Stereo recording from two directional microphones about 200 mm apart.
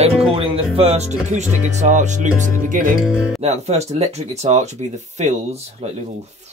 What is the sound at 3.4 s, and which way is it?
Speech, 35° right (ahead or behind).